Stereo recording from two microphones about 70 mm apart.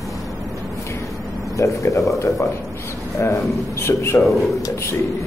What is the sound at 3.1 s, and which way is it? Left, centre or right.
A man's voice, left.